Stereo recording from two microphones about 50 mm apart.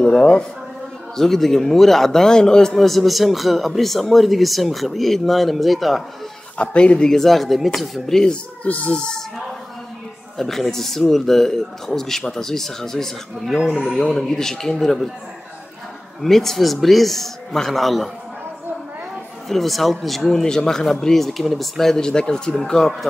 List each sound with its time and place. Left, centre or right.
0.0 s speech: centre
1.1 s a man's voice: centre
6.6 s speech: left
7.1 s a man's voice: centre
8.6 s speech: left
10.3 s speech: centre
16.2 s a man's voice: centre
19.5 s a man's voice: centre